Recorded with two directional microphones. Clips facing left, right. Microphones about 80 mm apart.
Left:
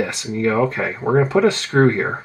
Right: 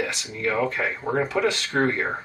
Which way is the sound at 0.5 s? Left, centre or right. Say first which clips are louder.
Left 4 dB; centre.